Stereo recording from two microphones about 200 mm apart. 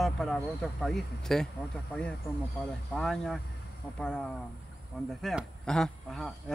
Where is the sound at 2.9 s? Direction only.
Centre (ahead or behind).